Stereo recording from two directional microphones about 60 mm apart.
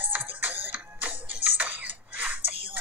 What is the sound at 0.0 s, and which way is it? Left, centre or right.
Music, right.